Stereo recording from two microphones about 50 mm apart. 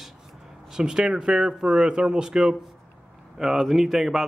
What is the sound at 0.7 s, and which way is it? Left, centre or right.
Speech, centre.